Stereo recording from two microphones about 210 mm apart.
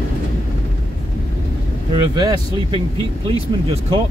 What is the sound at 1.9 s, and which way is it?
Speech, 20° right (ahead or behind).